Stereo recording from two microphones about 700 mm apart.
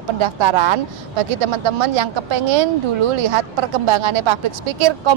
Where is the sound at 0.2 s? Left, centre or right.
Right.